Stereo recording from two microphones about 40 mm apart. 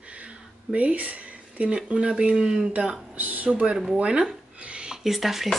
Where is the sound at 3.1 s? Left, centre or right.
Right.